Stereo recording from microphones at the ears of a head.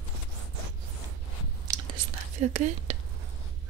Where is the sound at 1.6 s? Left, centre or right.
Right.